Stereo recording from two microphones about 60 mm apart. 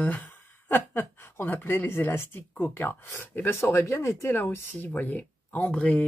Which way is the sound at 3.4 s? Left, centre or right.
Left.